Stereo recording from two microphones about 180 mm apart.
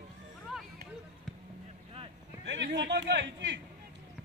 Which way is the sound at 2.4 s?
75° right (ahead or behind).